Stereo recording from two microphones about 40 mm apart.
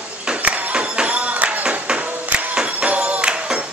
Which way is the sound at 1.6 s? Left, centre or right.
Right.